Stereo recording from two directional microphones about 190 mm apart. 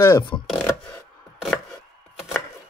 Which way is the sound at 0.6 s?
10° left (ahead or behind).